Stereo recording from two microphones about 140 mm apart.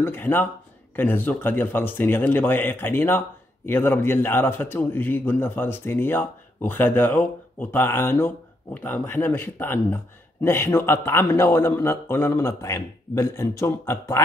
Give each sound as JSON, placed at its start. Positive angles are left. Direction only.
{"t": 0.0, "sound": "a man's voice", "side_deg": 15}